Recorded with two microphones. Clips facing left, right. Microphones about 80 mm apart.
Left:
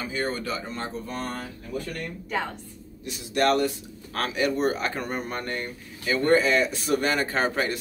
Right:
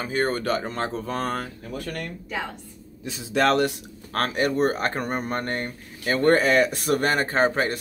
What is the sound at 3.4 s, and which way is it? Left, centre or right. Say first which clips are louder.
Speech: right 1 dB; right.